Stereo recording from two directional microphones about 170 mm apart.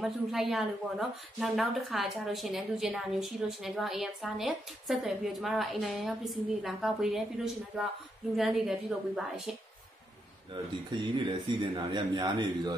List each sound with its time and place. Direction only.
0.0 s a woman's voice: centre (ahead or behind)
10.9 s a man's voice: 25° right (ahead or behind)